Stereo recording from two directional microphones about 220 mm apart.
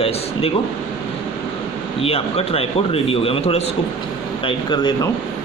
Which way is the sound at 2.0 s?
25° left (ahead or behind).